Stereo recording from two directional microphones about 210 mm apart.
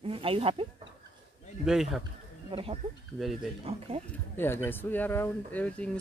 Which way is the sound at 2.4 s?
25° right (ahead or behind).